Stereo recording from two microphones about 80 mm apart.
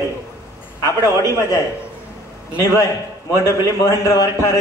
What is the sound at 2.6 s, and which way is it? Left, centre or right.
A man's voice, left.